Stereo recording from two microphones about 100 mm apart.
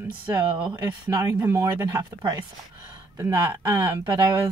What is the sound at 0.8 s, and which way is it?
A woman's voice, 35° right (ahead or behind).